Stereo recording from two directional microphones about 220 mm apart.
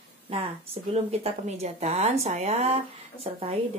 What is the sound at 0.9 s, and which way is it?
Speech, 30° right (ahead or behind).